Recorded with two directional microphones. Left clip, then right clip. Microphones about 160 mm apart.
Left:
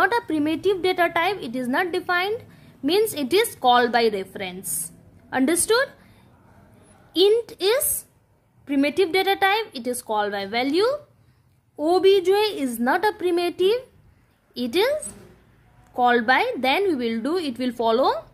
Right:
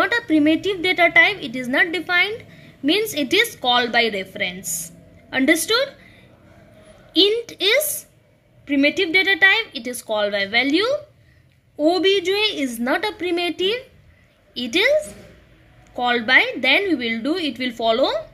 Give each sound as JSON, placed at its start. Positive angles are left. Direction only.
{"t": 0.0, "sound": "a woman's voice", "side_deg": 30}